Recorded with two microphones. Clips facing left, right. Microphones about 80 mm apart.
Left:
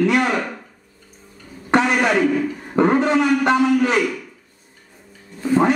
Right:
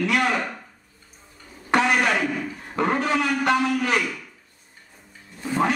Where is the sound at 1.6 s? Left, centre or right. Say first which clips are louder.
Left 3 dB; left.